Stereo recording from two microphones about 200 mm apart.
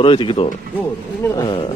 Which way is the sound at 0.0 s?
25° left (ahead or behind).